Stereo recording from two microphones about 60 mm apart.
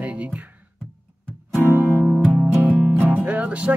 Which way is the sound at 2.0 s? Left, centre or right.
Centre.